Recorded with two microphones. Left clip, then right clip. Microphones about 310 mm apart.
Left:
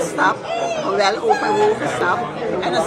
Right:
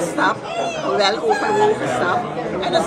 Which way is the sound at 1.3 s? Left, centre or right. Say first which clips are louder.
Left 1 dB; left.